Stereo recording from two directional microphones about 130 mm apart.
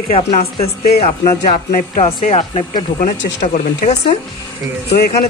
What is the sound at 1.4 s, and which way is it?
Speech, 85° left.